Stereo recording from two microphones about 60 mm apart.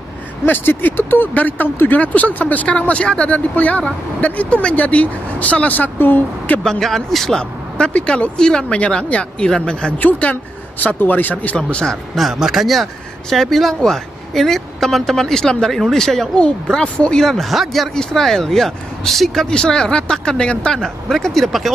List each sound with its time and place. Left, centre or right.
0.5 s speech: left
6.6 s speech: centre
7.7 s speech: centre
9.9 s speech: left
11.5 s speech: centre
12.2 s speech: centre
19.4 s speech: centre